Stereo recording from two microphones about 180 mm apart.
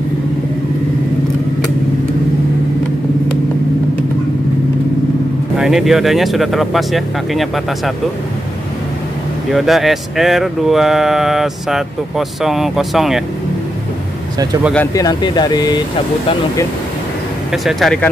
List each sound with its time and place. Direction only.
5.6 s speech: centre (ahead or behind)
9.5 s speech: centre (ahead or behind)
15.0 s speech: 20° left (ahead or behind)
17.5 s speech: centre (ahead or behind)